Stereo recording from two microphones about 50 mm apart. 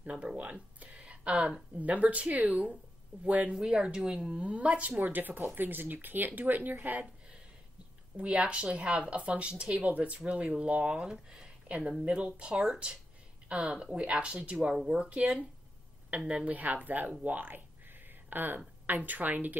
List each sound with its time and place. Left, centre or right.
0.0 s speech: right
1.8 s speech: right
3.5 s speech: centre; by 7.1 s right
8.2 s speech: right
13.5 s speech: right